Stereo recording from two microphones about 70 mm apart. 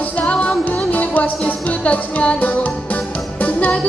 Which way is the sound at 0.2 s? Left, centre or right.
Centre.